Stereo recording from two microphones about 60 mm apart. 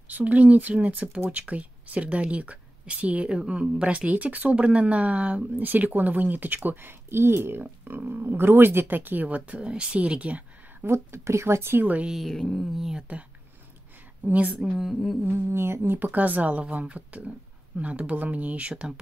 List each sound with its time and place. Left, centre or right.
0.1 s speech: right
10.8 s speech: right
11.8 s speech: right
12.1 s a woman's voice: centre
12.7 s speech: centre
14.2 s speech: right
14.6 s a woman's voice: centre
15.2 s speech: right; by 18.9 s centre